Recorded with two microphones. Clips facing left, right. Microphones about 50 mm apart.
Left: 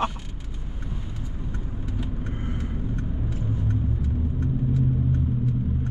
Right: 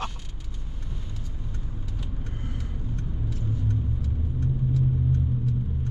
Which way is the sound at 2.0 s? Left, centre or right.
Left.